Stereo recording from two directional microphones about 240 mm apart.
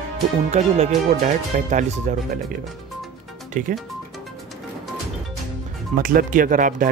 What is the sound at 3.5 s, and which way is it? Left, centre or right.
Speech, right.